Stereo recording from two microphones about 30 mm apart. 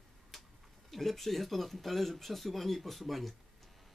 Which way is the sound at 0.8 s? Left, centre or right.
Centre.